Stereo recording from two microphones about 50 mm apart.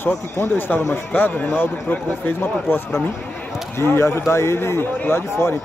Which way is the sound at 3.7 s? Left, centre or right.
Left.